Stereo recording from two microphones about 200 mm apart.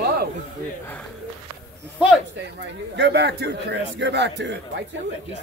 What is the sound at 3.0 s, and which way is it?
A man's voice, 55° right (ahead or behind).